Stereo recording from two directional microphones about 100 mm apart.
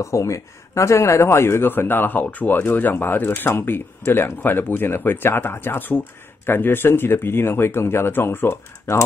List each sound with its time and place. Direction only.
0.0 s speech: 30° left (ahead or behind)